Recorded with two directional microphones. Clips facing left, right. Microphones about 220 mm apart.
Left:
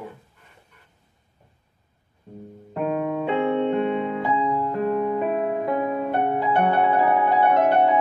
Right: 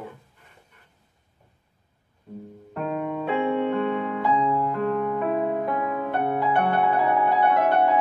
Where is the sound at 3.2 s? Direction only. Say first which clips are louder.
Left 1 dB; 20° left (ahead or behind).